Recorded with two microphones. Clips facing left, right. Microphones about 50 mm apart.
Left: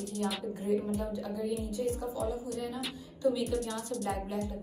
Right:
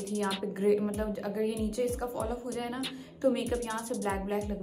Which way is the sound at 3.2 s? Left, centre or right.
Right.